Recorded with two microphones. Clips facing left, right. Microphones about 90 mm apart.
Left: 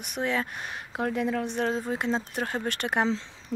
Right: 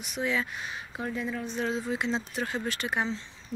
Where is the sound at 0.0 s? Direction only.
55° left (ahead or behind).